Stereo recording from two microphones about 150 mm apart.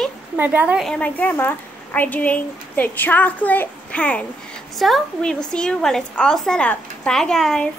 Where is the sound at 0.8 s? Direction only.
10° left (ahead or behind).